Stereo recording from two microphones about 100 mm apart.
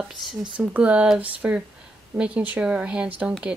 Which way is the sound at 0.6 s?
15° right (ahead or behind).